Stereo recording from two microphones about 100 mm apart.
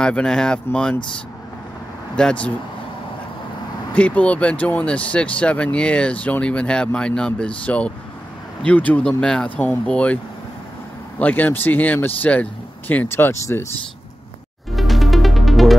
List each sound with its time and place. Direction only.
0.0 s speech: 10° left (ahead or behind)
2.1 s speech: 10° left (ahead or behind)
3.9 s speech: 15° left (ahead or behind)
11.1 s speech: 15° left (ahead or behind)
14.8 s music: centre (ahead or behind)